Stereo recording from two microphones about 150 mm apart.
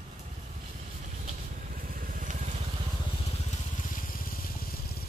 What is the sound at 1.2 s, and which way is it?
Vehicle, 65° right (ahead or behind).